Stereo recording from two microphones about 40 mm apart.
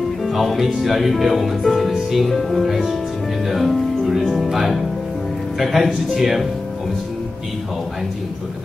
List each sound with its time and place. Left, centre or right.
0.2 s speech: centre